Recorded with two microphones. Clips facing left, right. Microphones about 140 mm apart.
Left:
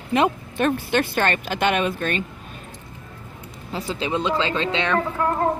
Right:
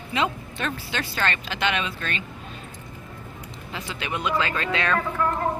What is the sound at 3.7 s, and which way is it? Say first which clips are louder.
Speech: left 7 dB; 30° left (ahead or behind).